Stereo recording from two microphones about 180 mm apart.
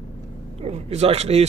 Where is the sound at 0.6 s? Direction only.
35° right (ahead or behind).